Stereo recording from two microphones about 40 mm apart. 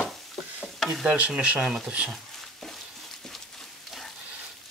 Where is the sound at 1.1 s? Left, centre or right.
Right.